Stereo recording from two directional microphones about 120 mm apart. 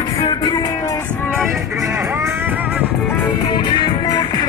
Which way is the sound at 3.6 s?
35° left (ahead or behind).